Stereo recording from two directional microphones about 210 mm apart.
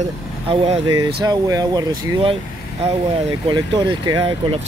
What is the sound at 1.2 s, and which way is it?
Speech, 20° right (ahead or behind).